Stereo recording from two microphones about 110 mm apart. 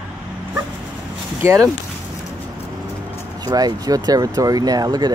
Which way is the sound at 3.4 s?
35° right (ahead or behind).